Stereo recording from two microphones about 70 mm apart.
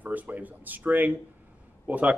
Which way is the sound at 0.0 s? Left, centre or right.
Right.